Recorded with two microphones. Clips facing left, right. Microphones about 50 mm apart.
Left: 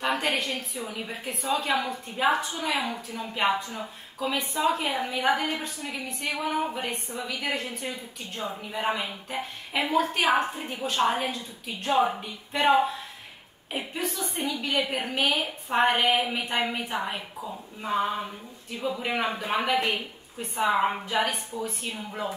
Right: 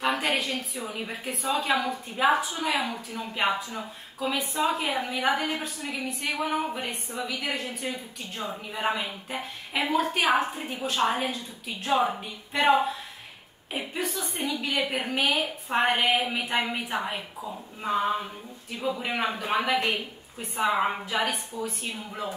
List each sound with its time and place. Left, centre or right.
0.0 s a sound: centre
0.9 s a woman's voice: centre
18.8 s a woman's voice: centre